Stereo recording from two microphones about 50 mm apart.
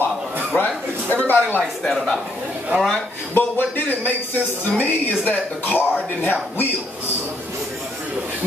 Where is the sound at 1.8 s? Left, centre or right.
Centre.